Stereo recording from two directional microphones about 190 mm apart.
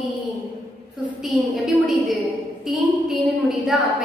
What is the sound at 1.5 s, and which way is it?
A woman's voice, centre (ahead or behind).